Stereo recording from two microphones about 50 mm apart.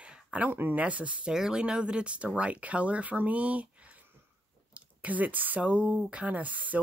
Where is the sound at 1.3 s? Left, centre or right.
Centre.